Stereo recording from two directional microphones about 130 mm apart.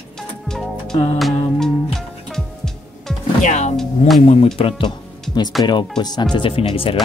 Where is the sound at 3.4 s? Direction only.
65° left (ahead or behind).